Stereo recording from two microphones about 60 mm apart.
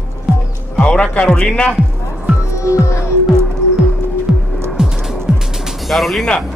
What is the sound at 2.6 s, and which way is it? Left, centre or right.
Music, left.